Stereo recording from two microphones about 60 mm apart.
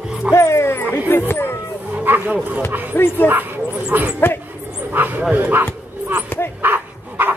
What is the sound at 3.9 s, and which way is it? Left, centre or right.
Speech, right.